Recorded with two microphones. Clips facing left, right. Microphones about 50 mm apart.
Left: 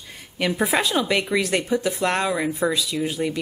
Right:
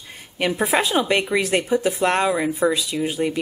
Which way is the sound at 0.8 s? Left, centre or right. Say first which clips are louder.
Right 2 dB; centre.